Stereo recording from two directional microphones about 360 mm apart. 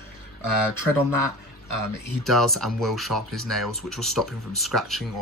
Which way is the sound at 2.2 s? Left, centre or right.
Centre.